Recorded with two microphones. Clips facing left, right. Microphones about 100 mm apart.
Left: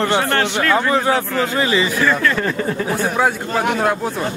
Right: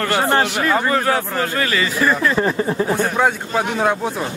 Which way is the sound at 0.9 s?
20° left (ahead or behind).